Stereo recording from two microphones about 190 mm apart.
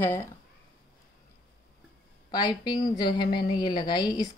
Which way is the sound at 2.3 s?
20° left (ahead or behind).